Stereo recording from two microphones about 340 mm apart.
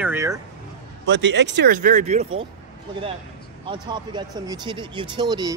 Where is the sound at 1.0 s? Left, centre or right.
Right.